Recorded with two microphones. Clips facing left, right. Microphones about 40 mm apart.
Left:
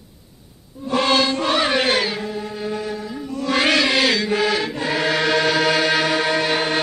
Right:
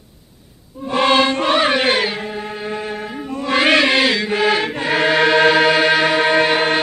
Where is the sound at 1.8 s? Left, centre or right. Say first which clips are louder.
Right 2 dB; right.